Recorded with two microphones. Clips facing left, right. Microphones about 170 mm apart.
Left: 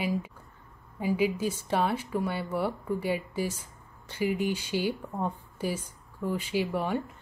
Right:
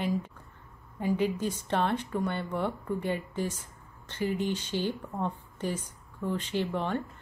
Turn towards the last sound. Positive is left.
turn(degrees=10)  # may be behind; listen again after turning